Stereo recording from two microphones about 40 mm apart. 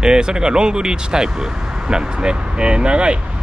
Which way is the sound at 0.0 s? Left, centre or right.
Centre.